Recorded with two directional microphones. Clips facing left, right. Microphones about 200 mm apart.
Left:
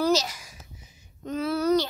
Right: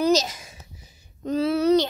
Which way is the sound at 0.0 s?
20° right (ahead or behind).